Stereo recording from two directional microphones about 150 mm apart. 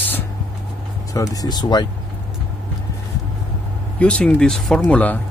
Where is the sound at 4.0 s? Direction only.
10° left (ahead or behind).